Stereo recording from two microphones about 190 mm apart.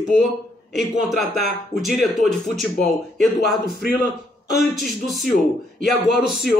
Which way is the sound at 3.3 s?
55° left (ahead or behind).